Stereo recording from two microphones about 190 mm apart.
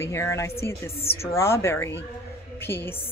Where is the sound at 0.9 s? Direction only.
30° left (ahead or behind).